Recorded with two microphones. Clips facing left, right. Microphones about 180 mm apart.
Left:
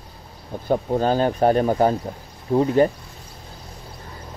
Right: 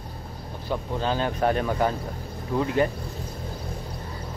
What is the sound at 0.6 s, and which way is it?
Speech, 45° left (ahead or behind).